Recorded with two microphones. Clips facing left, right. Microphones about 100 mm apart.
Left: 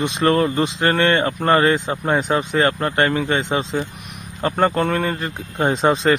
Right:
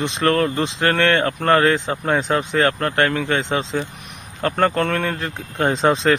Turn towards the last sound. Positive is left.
turn(degrees=5)  # may be behind; listen again after turning